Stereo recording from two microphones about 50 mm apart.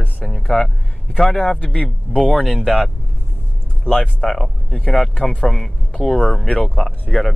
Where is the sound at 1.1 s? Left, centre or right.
Centre.